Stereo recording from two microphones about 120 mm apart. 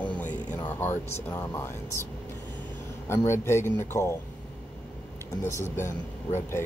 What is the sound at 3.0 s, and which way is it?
Speech, 20° left (ahead or behind).